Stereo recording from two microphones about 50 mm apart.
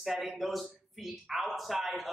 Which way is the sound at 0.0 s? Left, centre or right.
Centre.